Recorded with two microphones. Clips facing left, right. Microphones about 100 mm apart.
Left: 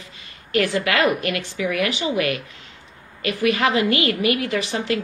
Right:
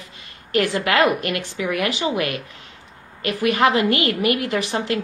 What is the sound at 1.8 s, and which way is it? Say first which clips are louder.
Speech: right 1 dB; 40° right (ahead or behind).